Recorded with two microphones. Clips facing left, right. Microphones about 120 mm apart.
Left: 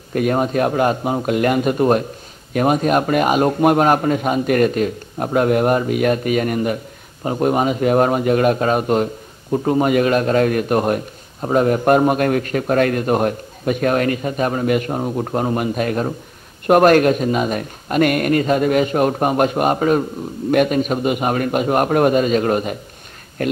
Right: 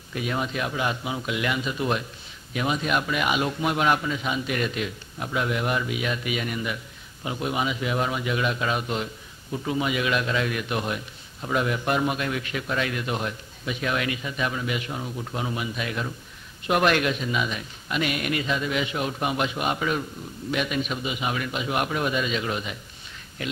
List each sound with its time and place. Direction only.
0.1 s a man's voice: 50° left (ahead or behind)